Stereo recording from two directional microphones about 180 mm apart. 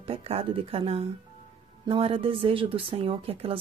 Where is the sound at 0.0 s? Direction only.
35° right (ahead or behind).